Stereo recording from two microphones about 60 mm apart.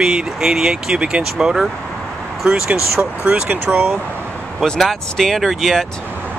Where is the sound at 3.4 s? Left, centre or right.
Right.